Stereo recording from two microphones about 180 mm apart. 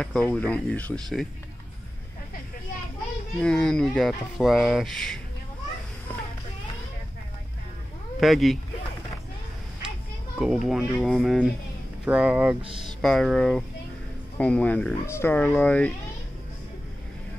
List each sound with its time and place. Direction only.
0.0 s speech: 5° left (ahead or behind)
3.3 s speech: 5° left (ahead or behind)
8.2 s speech: centre (ahead or behind)
10.3 s speech: 5° right (ahead or behind)
12.6 s speech: 30° right (ahead or behind)
13.0 s speech: centre (ahead or behind)